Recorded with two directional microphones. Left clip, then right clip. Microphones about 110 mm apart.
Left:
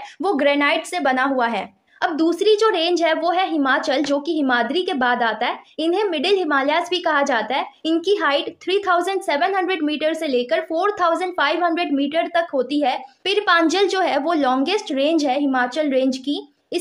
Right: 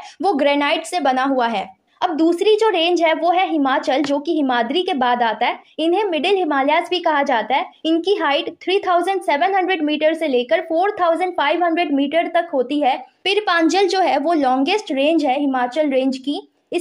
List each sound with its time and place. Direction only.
0.2 s a woman's voice: 25° right (ahead or behind)
2.0 s a woman's voice: 15° right (ahead or behind)